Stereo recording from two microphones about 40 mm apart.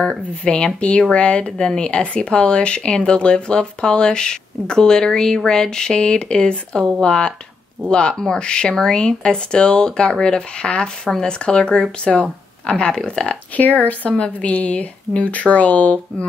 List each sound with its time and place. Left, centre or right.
0.4 s speech: left
13.6 s speech: left